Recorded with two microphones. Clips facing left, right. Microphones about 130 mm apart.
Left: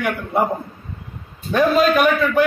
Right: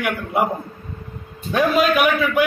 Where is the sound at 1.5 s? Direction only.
5° right (ahead or behind).